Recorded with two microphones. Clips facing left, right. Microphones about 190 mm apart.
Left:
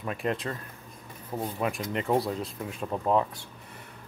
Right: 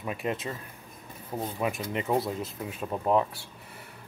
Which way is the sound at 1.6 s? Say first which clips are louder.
Even; 10° right (ahead or behind).